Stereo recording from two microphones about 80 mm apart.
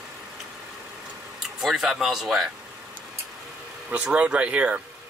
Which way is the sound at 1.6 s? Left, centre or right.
Centre.